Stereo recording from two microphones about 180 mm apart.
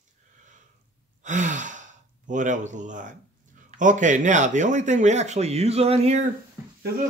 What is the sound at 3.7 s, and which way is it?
Speech, 45° right (ahead or behind).